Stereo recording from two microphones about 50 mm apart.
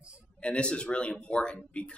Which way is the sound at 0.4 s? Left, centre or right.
Left.